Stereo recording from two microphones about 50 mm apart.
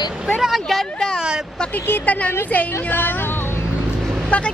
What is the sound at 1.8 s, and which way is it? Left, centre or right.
Speech, left.